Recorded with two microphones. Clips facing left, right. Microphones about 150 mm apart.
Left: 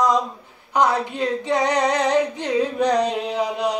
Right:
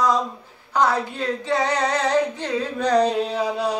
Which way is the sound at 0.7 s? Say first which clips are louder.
Left 1 dB; 15° left (ahead or behind).